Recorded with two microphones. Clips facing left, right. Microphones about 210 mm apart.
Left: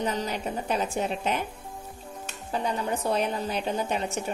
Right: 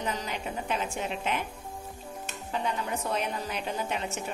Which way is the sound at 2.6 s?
35° left (ahead or behind).